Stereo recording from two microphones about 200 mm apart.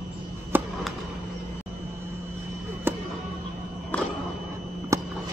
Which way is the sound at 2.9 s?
10° right (ahead or behind).